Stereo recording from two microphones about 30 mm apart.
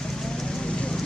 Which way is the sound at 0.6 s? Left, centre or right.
Left.